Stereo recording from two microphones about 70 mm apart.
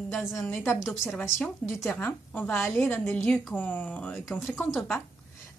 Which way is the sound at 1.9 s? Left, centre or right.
Left.